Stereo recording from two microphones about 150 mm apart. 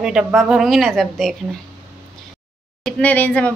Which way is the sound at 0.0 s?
5° right (ahead or behind).